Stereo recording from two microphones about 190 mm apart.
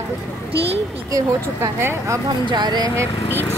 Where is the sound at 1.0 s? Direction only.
15° right (ahead or behind).